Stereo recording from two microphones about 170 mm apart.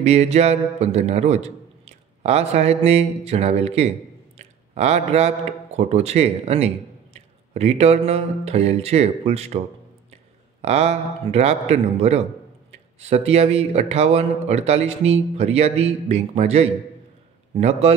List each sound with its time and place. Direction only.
0.0 s a man's voice: 40° right (ahead or behind)
4.4 s a sound: 40° right (ahead or behind)
5.8 s a man's voice: 40° right (ahead or behind)
10.6 s a man's voice: 40° right (ahead or behind)